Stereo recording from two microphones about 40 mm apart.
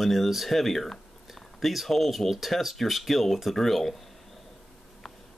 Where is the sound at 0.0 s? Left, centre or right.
Centre.